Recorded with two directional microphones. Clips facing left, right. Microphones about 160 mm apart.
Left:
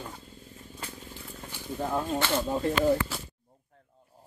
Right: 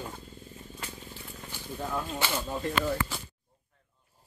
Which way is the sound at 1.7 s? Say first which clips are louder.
Left 4 dB; 30° left (ahead or behind).